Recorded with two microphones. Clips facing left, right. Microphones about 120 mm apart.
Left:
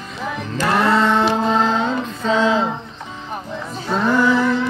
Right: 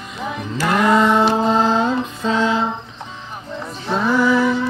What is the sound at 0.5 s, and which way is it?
Music, 15° right (ahead or behind).